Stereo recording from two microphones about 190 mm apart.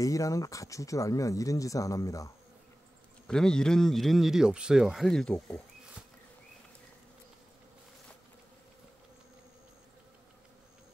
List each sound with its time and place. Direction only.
0.0 s speech: 15° left (ahead or behind)
3.3 s speech: 5° left (ahead or behind)